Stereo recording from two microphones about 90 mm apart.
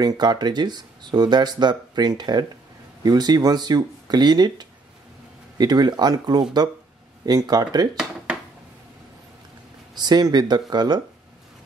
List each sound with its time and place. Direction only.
0.0 s speech: 50° right (ahead or behind)
9.9 s speech: 50° right (ahead or behind)